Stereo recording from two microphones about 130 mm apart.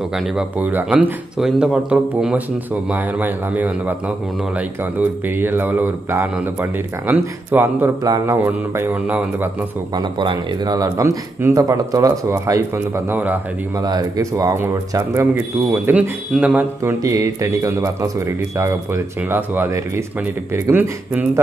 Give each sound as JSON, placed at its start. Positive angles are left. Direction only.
{"t": 0.1, "sound": "speech", "side_deg": -10}
{"t": 8.0, "sound": "speech", "side_deg": -25}
{"t": 8.5, "sound": "speech", "side_deg": -15}
{"t": 9.9, "sound": "speech", "side_deg": -35}
{"t": 13.7, "sound": "speech", "side_deg": -30}
{"t": 16.8, "sound": "speech", "side_deg": -25}